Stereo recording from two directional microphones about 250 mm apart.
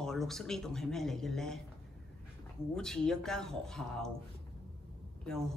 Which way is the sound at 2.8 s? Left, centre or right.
Centre.